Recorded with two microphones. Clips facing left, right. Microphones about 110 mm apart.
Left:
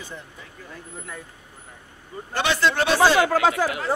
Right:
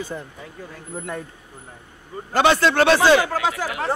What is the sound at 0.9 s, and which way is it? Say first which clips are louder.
Speech: right 9 dB; 65° right (ahead or behind).